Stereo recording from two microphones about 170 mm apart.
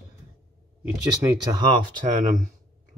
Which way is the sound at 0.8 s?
20° right (ahead or behind).